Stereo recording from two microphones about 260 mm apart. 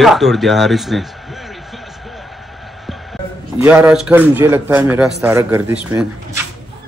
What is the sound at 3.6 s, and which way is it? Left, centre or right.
A man's voice, centre.